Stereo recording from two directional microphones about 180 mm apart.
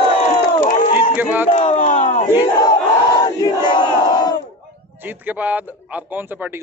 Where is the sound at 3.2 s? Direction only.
25° left (ahead or behind).